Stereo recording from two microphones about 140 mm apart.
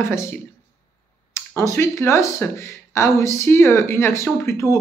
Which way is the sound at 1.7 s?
20° left (ahead or behind).